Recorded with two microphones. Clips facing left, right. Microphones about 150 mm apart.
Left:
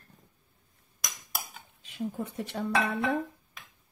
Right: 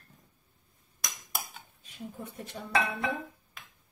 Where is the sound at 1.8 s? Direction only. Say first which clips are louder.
Left 8 dB; 85° left.